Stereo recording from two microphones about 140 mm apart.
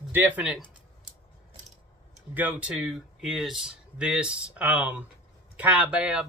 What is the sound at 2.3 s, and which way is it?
Speech, 10° right (ahead or behind).